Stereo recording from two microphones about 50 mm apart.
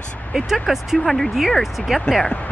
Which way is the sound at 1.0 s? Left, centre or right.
Centre.